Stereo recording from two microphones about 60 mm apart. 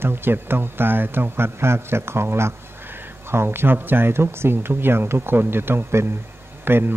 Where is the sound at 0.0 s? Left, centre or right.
Right.